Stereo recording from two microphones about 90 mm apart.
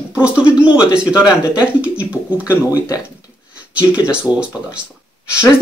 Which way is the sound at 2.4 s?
35° left (ahead or behind).